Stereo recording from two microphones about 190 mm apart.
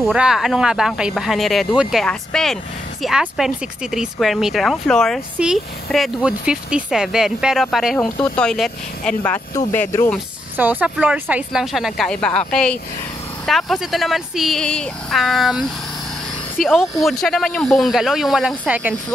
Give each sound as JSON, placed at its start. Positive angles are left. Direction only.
{"t": 0.0, "sound": "speech", "side_deg": -5}
{"t": 10.6, "sound": "speech", "side_deg": -10}